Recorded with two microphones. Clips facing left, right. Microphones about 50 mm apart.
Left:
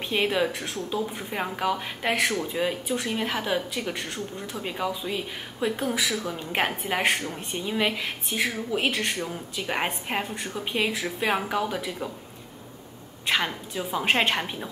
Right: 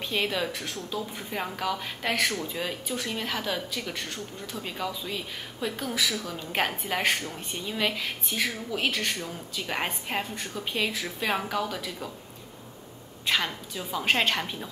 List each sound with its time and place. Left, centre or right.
0.1 s speech: centre
13.3 s speech: centre